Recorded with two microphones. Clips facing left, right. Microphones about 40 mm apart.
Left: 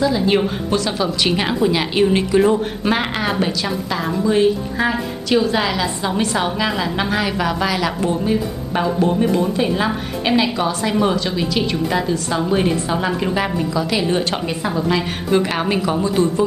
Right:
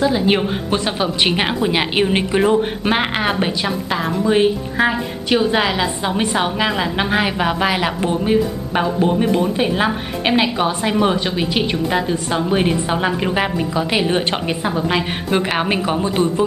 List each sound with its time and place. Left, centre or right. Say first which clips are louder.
0.0 s a woman's voice: even; right